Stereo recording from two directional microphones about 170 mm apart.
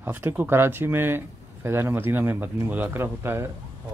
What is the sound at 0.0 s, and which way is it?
Speech, 10° right (ahead or behind).